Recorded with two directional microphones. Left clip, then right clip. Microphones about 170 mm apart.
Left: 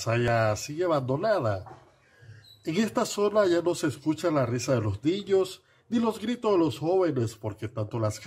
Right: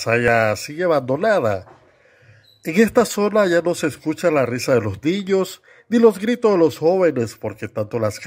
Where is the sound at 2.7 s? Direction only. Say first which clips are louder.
Right 12 dB; 30° right (ahead or behind).